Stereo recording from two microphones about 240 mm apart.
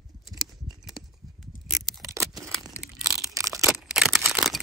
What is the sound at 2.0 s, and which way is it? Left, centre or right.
Scissors, centre.